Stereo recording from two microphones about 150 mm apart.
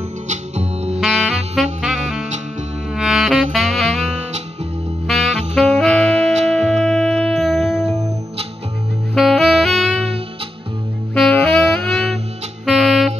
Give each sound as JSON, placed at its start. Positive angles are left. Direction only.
{"t": 0.3, "sound": "music", "side_deg": -45}
{"t": 1.0, "sound": "saxophone", "side_deg": 0}
{"t": 2.9, "sound": "music", "side_deg": -5}
{"t": 3.5, "sound": "saxophone", "side_deg": 0}
{"t": 5.5, "sound": "music", "side_deg": 0}
{"t": 9.1, "sound": "saxophone", "side_deg": 0}
{"t": 11.4, "sound": "saxophone", "side_deg": 5}
{"t": 12.6, "sound": "music", "side_deg": 0}